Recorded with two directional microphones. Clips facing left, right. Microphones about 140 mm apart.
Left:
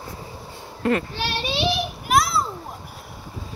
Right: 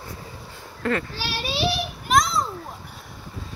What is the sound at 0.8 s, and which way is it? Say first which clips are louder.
Speech: left 3 dB; 20° left (ahead or behind).